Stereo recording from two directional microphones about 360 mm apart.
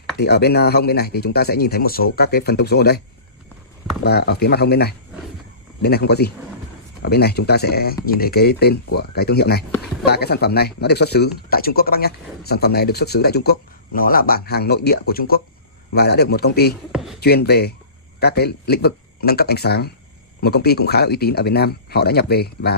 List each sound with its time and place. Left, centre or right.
0.2 s speech: left
4.0 s speech: left
16.9 s speech: centre
17.2 s speech: left